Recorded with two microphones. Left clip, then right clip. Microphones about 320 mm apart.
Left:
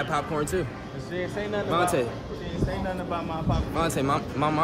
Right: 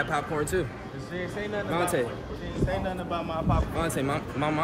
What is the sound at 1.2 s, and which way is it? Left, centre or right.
Speech, left.